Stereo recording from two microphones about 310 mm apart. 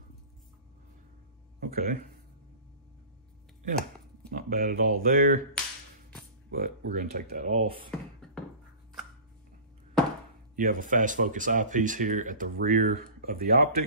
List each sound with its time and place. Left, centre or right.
1.6 s speech: right
4.3 s speech: right
6.5 s speech: right
10.5 s speech: right